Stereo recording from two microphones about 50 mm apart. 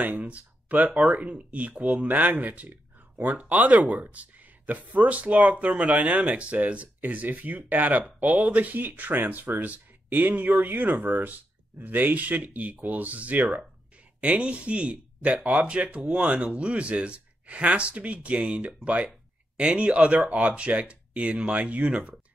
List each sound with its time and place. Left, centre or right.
0.0 s speech: right